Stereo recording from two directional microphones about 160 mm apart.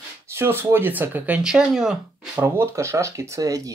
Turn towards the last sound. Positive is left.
turn(degrees=-20)  # may be behind; listen again after turning